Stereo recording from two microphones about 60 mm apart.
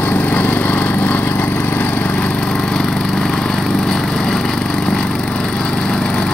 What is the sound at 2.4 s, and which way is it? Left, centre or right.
Vehicle, centre.